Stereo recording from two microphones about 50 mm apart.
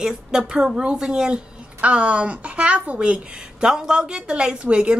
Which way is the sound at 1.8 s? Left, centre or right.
Right.